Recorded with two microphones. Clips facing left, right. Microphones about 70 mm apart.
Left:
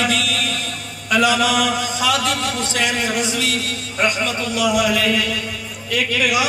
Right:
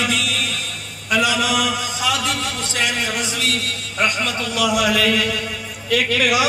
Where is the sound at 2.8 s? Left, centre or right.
Centre.